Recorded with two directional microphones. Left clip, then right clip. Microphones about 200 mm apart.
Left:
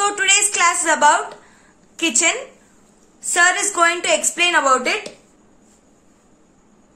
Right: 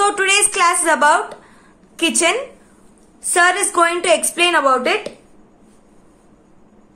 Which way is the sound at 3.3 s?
20° right (ahead or behind).